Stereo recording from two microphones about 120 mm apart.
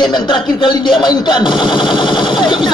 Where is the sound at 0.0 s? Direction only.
35° left (ahead or behind).